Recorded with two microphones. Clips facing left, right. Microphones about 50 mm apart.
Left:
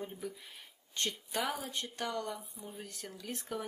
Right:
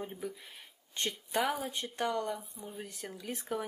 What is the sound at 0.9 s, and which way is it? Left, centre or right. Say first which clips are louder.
Speech: right 3 dB; centre.